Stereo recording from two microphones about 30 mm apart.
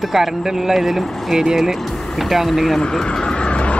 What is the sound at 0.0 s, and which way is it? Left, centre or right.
Speech, centre.